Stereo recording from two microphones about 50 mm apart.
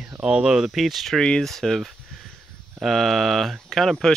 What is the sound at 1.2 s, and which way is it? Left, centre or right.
Speech, centre.